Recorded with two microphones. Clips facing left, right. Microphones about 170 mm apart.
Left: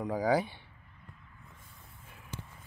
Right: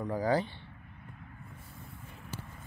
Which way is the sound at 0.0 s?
10° left (ahead or behind).